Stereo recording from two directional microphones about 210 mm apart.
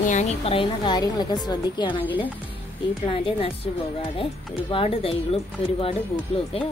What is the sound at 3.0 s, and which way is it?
A woman's voice, 25° left (ahead or behind).